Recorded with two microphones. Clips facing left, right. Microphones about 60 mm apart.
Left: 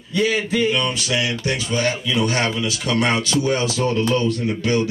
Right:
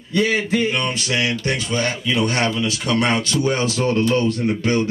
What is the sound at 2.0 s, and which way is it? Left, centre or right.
Speech, right.